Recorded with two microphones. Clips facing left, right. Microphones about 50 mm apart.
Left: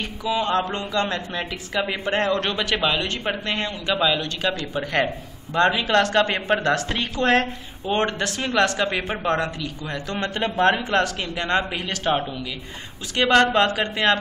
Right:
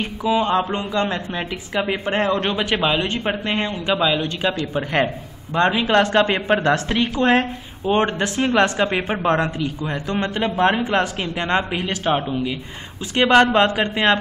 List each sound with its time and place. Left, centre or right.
0.0 s a man's voice: centre
12.3 s a man's voice: right
13.1 s a man's voice: centre